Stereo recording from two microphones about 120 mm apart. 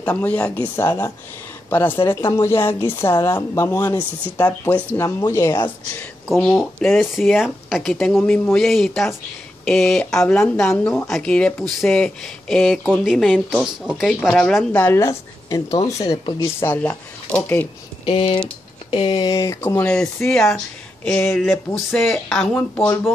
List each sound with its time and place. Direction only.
0.0 s a woman's voice: 15° left (ahead or behind)
6.2 s speech: centre (ahead or behind)
8.2 s speech: 20° left (ahead or behind)
8.5 s speech: centre (ahead or behind)
14.8 s a woman's voice: 20° left (ahead or behind)
16.5 s speech: 20° left (ahead or behind)
18.0 s speech: 50° left (ahead or behind)
19.2 s a woman's voice: 25° left (ahead or behind)
20.2 s speech: centre (ahead or behind)